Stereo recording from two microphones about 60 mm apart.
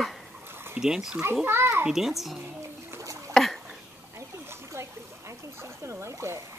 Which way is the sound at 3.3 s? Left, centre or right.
Centre.